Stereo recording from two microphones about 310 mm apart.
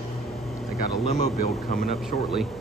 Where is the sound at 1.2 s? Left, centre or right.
Left.